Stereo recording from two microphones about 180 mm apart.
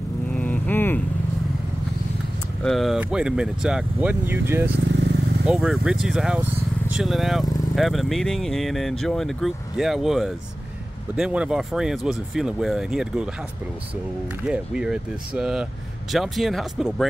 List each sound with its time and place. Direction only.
0.3 s vehicle: 10° left (ahead or behind)
2.6 s speech: centre (ahead or behind)
4.7 s vehicle: 70° right (ahead or behind)
5.5 s speech: 5° right (ahead or behind)
14.4 s speech: 5° right (ahead or behind)